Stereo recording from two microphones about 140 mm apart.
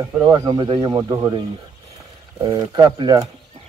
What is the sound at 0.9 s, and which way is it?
Speech, 25° right (ahead or behind).